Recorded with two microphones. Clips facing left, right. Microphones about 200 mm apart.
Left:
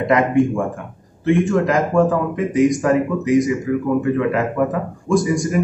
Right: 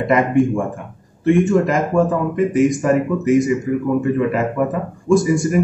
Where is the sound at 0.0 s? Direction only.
Centre (ahead or behind).